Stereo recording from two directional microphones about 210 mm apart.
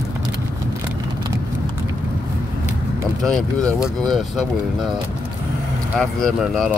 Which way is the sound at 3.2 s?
Centre (ahead or behind).